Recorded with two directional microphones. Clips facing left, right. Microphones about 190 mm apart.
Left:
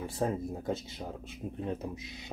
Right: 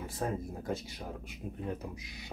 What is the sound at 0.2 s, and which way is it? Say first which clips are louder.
Speech: left 3 dB; 25° left (ahead or behind).